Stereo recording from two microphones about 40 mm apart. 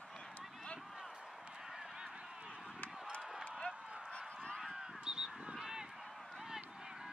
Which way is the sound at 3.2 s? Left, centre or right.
Centre.